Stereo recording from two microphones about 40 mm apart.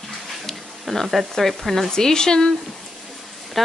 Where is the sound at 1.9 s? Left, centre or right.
Centre.